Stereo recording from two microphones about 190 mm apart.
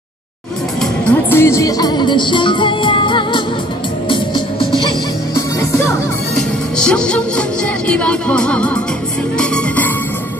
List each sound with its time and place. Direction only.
0.7 s music: 10° left (ahead or behind)
6.3 s music: 5° left (ahead or behind)